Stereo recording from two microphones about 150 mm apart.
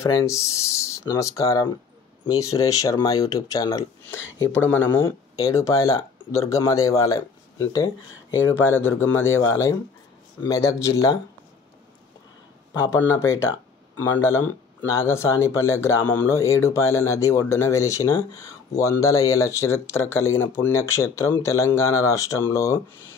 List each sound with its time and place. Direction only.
0.0 s speech: 20° left (ahead or behind)
12.7 s speech: 25° left (ahead or behind)